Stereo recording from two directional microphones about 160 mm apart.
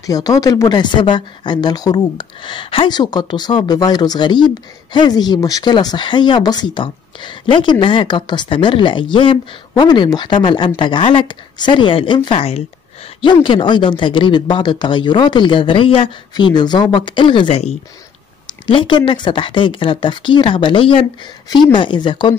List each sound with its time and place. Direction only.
0.0 s speech: 20° left (ahead or behind)